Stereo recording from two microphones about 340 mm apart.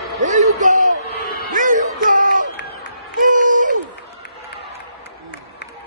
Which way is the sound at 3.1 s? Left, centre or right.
Right.